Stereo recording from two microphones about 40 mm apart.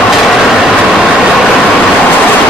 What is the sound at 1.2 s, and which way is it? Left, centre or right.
Vehicle, centre.